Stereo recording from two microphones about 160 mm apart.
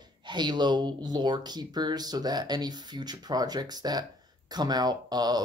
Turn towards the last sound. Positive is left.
turn(degrees=-25)  # may be behind; listen again after turning